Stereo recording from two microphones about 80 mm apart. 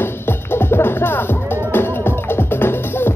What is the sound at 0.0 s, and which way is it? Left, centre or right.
Music, left.